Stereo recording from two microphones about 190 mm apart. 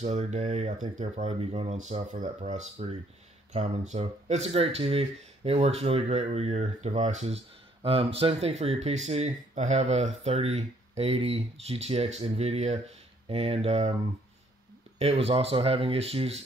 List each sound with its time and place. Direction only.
0.0 s speech: 40° right (ahead or behind)
15.0 s speech: 30° right (ahead or behind)